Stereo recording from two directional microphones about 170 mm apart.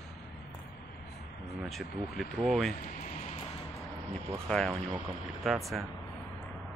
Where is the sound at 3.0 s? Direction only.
40° left (ahead or behind).